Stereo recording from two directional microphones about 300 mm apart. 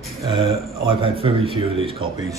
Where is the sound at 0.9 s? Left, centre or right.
Centre.